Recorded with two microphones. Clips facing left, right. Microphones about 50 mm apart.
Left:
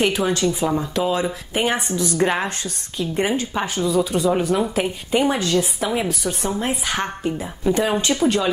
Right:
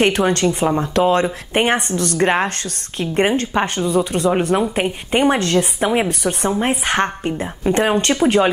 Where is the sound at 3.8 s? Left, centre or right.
Right.